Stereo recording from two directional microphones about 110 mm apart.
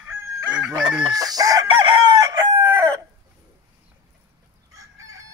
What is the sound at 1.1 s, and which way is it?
Chicken, 35° right (ahead or behind).